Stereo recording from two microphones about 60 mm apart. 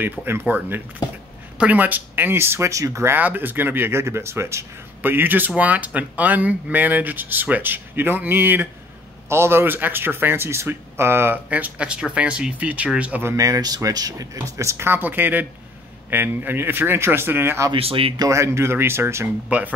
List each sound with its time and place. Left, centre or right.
0.5 s speech: right
2.7 s speech: right
3.2 s speech: right
4.0 s speech: right
5.0 s speech: right
11.3 s speech: right
13.4 s speech: right
14.9 s speech: right
18.2 s speech: right